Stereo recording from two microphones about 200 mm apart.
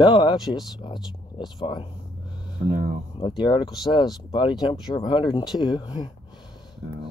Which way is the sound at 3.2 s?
25° left (ahead or behind).